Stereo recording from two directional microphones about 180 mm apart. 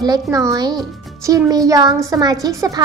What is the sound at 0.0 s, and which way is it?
A woman's voice, 20° right (ahead or behind).